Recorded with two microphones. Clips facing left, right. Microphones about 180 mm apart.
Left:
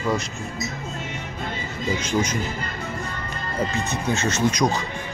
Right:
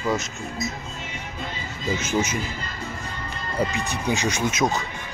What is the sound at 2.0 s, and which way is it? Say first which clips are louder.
Speech: even; 5° right (ahead or behind).